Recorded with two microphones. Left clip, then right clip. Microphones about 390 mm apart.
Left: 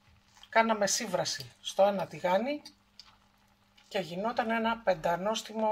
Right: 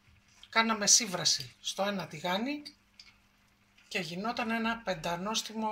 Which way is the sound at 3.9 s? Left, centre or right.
Left.